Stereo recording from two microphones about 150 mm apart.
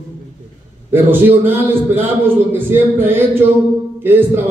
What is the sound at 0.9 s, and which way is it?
A man's voice, 15° right (ahead or behind).